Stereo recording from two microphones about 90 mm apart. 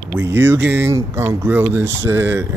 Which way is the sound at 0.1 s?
25° right (ahead or behind).